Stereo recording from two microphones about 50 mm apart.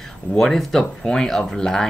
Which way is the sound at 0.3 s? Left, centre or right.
Centre.